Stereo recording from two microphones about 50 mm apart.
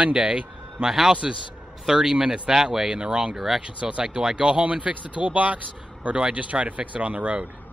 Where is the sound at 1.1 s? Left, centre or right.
Right.